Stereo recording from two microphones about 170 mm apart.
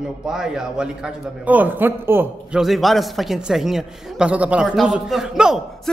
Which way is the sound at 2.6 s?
Centre (ahead or behind).